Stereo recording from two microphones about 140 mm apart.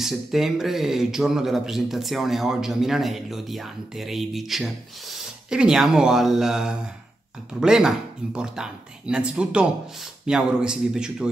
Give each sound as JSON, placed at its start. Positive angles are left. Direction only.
{"t": 0.0, "sound": "speech", "side_deg": 0}